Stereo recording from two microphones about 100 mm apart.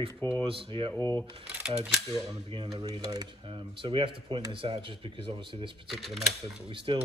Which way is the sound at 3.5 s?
60° right (ahead or behind).